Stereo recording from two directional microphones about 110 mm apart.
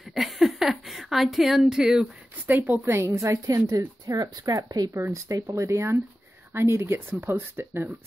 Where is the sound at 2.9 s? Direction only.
25° right (ahead or behind).